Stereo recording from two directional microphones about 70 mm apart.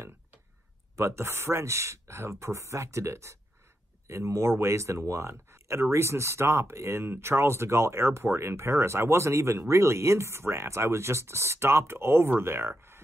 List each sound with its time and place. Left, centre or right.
0.9 s speech: right